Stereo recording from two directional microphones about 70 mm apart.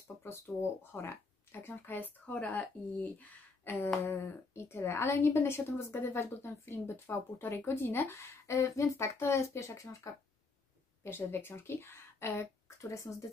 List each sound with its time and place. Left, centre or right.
0.2 s speech: left
1.7 s speech: left
3.6 s speech: left
11.1 s speech: left